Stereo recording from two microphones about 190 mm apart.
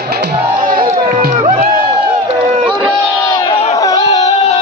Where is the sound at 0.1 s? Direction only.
55° right (ahead or behind).